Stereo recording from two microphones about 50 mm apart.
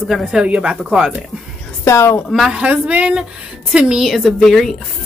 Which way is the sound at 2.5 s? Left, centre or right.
Right.